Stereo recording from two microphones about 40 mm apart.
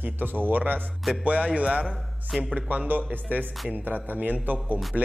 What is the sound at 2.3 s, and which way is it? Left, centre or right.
Speech, centre.